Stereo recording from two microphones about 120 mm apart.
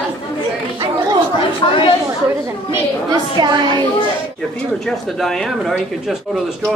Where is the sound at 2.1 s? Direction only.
20° right (ahead or behind).